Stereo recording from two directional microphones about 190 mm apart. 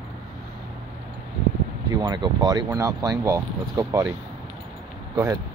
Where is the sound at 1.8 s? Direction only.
20° right (ahead or behind).